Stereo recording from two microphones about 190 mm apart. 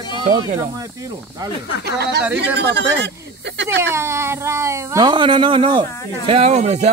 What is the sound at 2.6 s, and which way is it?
Speech, 65° right (ahead or behind).